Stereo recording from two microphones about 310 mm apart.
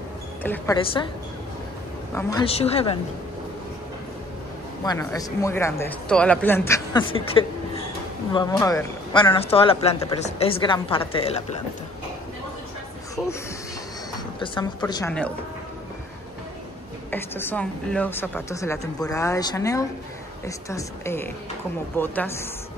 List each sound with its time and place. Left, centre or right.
0.4 s speech: centre
2.1 s speech: centre
4.8 s speech: centre
14.4 s speech: centre
17.1 s speech: centre